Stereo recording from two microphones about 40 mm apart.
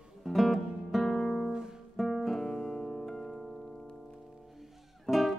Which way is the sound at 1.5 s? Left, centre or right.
Centre.